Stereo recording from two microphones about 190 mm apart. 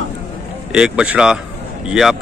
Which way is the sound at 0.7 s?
5° right (ahead or behind).